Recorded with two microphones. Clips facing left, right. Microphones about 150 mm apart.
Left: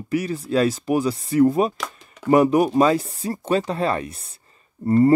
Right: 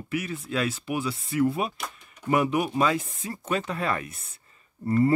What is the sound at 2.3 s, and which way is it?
Speech, 40° left (ahead or behind).